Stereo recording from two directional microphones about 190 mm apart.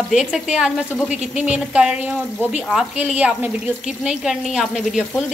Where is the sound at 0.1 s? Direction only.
5° right (ahead or behind).